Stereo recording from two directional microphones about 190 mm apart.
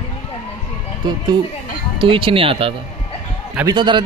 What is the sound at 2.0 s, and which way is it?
Speech, 25° right (ahead or behind).